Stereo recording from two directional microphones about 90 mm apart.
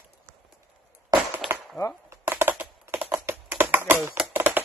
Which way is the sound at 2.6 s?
20° right (ahead or behind).